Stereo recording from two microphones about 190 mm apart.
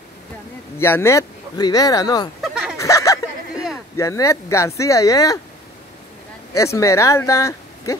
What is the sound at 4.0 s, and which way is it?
Speech, 15° left (ahead or behind).